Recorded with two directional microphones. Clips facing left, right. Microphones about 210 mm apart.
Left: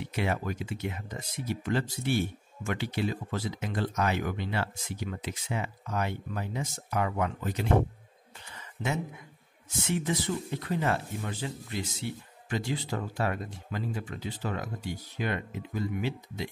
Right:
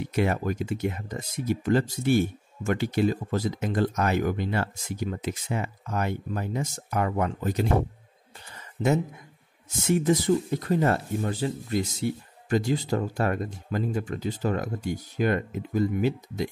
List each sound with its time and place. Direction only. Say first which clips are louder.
0.0 s speech: right 5 dB; 45° right (ahead or behind)
9.8 s speech: right 9 dB; 40° right (ahead or behind)